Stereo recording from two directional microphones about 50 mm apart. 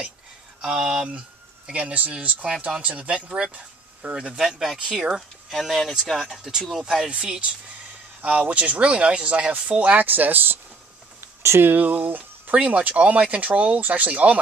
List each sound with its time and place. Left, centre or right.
0.6 s speech: centre
1.7 s speech: right
4.4 s speech: centre; by 10.6 s right
11.6 s speech: right
12.5 s speech: right